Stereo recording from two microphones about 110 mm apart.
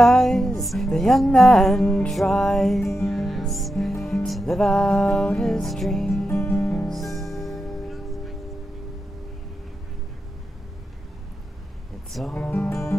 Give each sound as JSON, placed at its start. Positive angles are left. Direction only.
{"t": 0.0, "sound": "music", "side_deg": 5}
{"t": 6.2, "sound": "music", "side_deg": 25}
{"t": 6.9, "sound": "music", "side_deg": 0}
{"t": 12.1, "sound": "speech", "side_deg": 0}
{"t": 12.6, "sound": "music", "side_deg": 25}